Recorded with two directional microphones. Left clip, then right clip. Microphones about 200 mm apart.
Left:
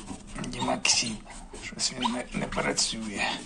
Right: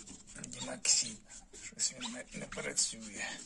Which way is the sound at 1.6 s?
65° right (ahead or behind).